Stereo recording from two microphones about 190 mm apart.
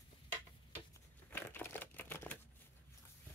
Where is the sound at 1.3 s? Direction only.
10° left (ahead or behind).